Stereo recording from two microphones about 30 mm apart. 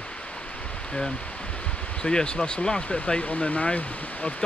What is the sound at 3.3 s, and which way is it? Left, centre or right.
Speech, left.